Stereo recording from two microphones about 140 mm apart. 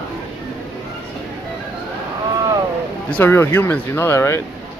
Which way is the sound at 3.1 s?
15° left (ahead or behind).